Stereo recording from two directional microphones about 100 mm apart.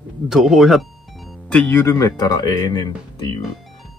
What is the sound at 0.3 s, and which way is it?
Speech, 5° right (ahead or behind).